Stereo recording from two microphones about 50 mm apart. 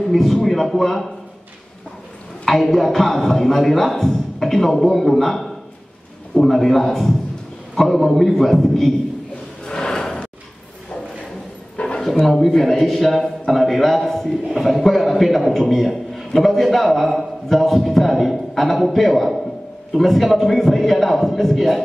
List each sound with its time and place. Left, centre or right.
0.1 s a man's voice: centre
2.4 s a man's voice: centre
9.7 s a sound: centre
11.7 s dog: left
12.3 s a man's voice: centre